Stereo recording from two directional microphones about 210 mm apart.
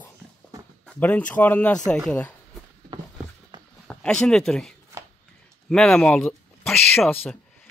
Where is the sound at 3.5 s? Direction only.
20° right (ahead or behind).